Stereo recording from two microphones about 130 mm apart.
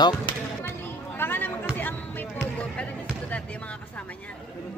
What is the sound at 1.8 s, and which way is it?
Basketball bounce, 15° left (ahead or behind).